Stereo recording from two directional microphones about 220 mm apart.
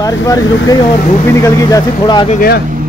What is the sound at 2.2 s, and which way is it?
Speech, 45° left (ahead or behind).